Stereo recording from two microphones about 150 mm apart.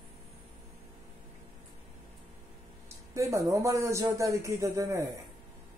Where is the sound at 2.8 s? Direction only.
20° right (ahead or behind).